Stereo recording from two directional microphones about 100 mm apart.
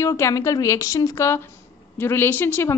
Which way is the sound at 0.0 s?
35° left (ahead or behind).